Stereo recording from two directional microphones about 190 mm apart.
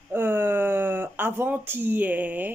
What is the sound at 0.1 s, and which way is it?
Speech, 10° right (ahead or behind).